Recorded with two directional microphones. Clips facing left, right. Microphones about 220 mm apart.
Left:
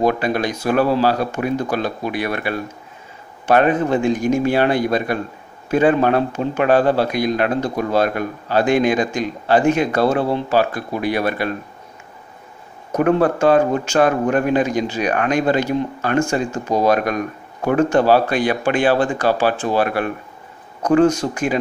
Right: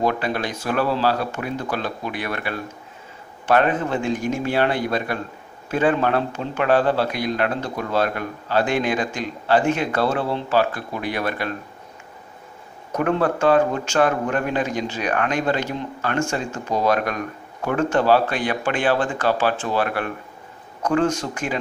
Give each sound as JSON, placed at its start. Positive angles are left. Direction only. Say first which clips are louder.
{"t": 0.0, "sound": "speech", "louder": "left 4 dB", "side_deg": 15}
{"t": 13.0, "sound": "speech", "louder": "left 4 dB", "side_deg": 15}
{"t": 21.2, "sound": "speech", "louder": "left 6 dB", "side_deg": 25}